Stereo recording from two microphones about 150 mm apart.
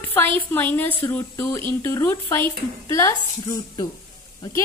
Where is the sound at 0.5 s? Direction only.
15° left (ahead or behind).